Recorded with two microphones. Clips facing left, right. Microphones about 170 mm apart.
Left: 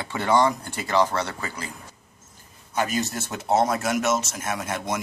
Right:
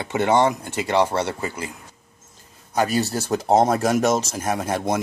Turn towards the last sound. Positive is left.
turn(degrees=-30)  # may be behind; listen again after turning